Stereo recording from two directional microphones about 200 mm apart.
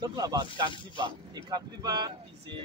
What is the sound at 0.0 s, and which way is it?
Speech, 20° right (ahead or behind).